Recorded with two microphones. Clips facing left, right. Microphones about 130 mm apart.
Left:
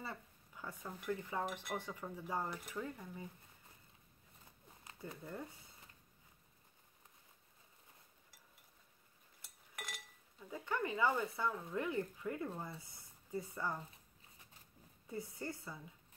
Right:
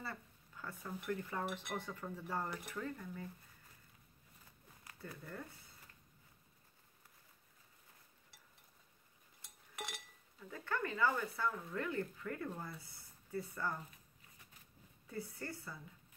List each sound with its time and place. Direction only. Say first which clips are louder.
0.0 s speech: even; 15° left (ahead or behind)
4.8 s a sound: left 2 dB; 25° left (ahead or behind)
10.4 s speech: left 1 dB; 15° left (ahead or behind)
15.0 s speech: left 1 dB; 20° left (ahead or behind)